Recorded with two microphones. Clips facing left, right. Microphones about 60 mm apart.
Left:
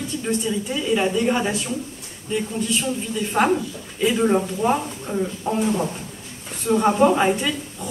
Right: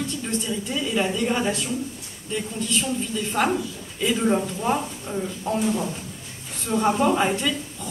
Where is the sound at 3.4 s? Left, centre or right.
Left.